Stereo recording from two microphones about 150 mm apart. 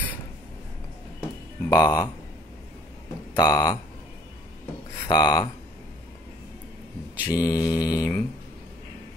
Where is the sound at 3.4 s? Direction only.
25° left (ahead or behind).